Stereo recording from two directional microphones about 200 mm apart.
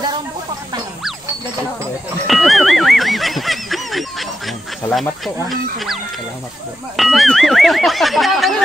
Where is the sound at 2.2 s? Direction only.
Centre (ahead or behind).